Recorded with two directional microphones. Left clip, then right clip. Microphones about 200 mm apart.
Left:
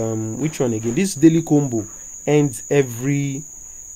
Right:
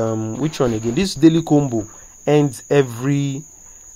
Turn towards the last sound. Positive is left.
turn(degrees=0)  # may be behind; listen again after turning